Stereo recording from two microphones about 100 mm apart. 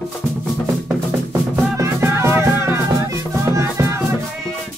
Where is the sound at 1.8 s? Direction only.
25° right (ahead or behind).